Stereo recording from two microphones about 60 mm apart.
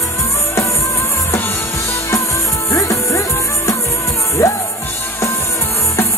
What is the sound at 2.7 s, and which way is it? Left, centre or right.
Music, left.